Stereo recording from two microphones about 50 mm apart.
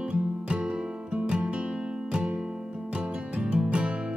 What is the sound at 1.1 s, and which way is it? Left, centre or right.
Music, right.